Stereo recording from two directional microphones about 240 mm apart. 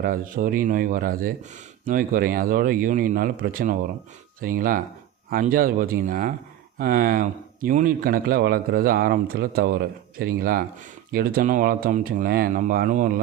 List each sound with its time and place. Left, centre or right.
0.0 s speech: right